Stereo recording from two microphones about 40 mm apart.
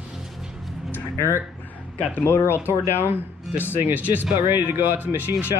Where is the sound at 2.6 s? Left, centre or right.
Right.